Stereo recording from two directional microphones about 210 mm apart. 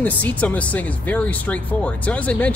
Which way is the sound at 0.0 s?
5° left (ahead or behind).